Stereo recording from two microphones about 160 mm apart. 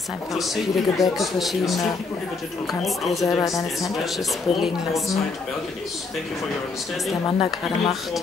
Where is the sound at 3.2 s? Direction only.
20° left (ahead or behind).